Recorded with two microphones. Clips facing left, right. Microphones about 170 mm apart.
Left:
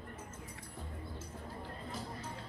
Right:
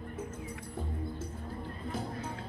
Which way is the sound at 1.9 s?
55° right (ahead or behind).